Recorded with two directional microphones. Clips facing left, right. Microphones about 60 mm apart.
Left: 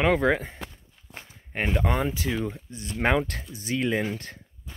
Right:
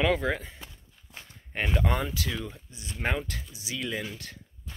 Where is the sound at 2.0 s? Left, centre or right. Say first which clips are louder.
Left 5 dB; left.